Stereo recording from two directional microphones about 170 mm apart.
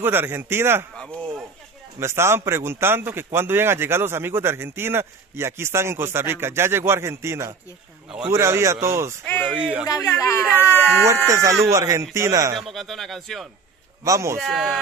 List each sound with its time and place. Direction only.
0.0 s a man's voice: 10° right (ahead or behind)
0.9 s a sound: 5° left (ahead or behind)
2.0 s a man's voice: 15° right (ahead or behind)
9.2 s speech: 10° left (ahead or behind)
9.5 s a man's voice: 5° right (ahead or behind)
10.0 s speech: 15° left (ahead or behind)
10.4 s a man's voice: 10° right (ahead or behind)
12.5 s speech: centre (ahead or behind)
14.0 s a man's voice: 15° right (ahead or behind)
14.4 s speech: centre (ahead or behind)